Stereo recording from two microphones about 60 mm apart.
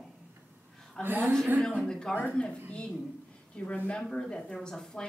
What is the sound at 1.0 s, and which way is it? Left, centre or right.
Speech, right.